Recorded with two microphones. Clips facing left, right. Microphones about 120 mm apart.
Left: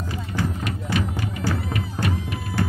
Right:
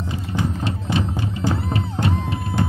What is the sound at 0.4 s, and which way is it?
Music, 25° right (ahead or behind).